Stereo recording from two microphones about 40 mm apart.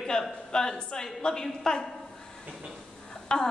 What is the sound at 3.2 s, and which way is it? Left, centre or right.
Throat clearing, centre.